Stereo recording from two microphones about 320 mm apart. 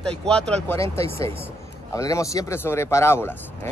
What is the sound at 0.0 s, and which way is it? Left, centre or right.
Speech, centre.